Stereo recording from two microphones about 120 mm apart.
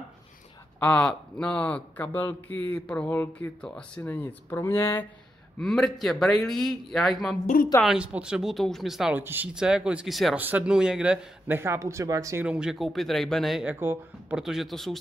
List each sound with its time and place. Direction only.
0.7 s a man's voice: 10° left (ahead or behind)
5.6 s a man's voice: 5° left (ahead or behind)
9.1 s speech: 15° right (ahead or behind)
10.3 s speech: 15° right (ahead or behind)
12.4 s a man's voice: 5° right (ahead or behind)
13.7 s speech: 20° right (ahead or behind)
14.3 s a man's voice: 5° right (ahead or behind)